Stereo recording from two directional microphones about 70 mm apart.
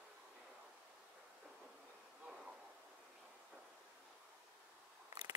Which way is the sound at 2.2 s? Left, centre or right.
Centre.